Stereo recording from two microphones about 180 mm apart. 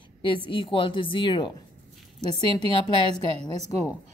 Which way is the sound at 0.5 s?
30° left (ahead or behind).